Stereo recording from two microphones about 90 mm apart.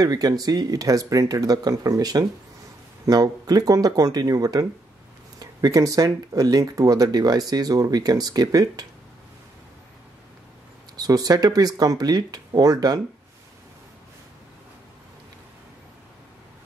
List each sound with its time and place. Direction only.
0.0 s speech: 45° right (ahead or behind)
11.0 s speech: 45° right (ahead or behind)